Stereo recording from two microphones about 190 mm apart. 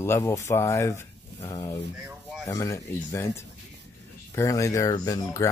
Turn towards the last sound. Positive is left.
turn(degrees=15)  # may be behind; listen again after turning